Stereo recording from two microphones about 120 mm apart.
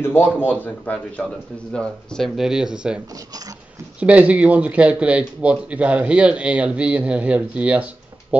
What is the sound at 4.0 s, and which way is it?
Speech, 10° right (ahead or behind).